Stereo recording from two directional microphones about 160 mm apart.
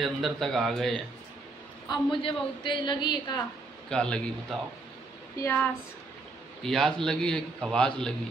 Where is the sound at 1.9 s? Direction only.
30° left (ahead or behind).